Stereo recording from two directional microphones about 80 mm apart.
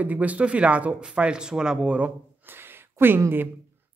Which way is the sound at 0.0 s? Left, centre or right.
Centre.